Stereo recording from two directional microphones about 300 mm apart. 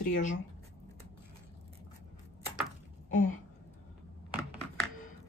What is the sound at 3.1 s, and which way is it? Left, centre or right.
Gasp, left.